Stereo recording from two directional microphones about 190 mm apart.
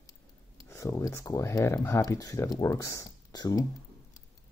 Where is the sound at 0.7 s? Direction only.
15° left (ahead or behind).